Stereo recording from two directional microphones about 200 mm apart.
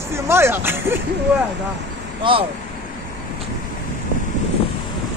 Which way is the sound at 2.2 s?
25° right (ahead or behind).